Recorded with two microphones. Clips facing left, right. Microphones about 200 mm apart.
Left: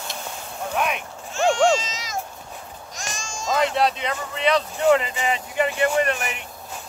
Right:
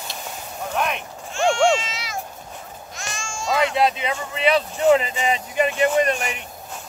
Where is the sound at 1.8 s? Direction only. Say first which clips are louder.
Right 1 dB; 40° left (ahead or behind).